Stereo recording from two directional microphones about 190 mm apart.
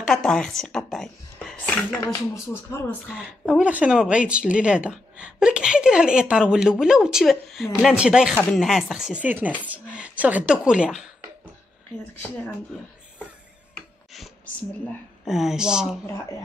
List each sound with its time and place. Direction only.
0.0 s speech: 5° left (ahead or behind)
2.4 s speech: 15° left (ahead or behind)
3.1 s speech: 5° right (ahead or behind)
13.7 s music: centre (ahead or behind)
15.2 s speech: centre (ahead or behind)